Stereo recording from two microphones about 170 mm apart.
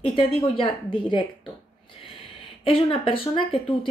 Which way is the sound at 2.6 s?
30° left (ahead or behind).